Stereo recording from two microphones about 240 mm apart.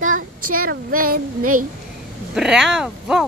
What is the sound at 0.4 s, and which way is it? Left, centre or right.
Speech, right.